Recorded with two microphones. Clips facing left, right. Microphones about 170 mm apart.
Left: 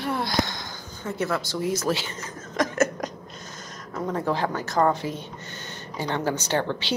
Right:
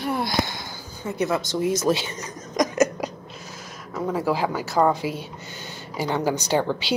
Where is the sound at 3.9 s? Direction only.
5° right (ahead or behind).